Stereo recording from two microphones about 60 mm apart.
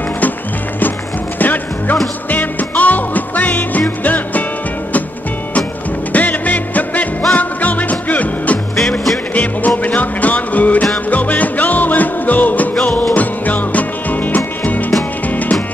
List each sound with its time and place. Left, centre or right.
1.4 s music: left
6.1 s music: left